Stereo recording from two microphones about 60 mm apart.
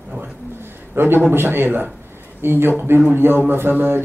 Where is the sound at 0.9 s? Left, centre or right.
Right.